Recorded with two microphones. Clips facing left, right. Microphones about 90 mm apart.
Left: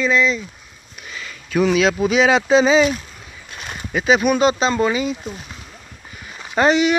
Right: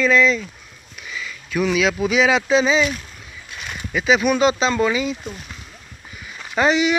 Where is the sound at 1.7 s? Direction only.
35° left (ahead or behind).